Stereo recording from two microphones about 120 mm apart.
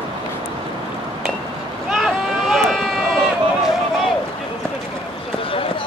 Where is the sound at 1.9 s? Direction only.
Centre (ahead or behind).